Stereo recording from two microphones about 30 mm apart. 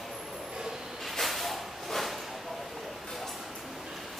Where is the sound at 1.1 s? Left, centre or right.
Centre.